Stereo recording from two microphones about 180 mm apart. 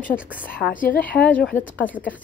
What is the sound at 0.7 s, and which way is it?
Speech, 50° left (ahead or behind).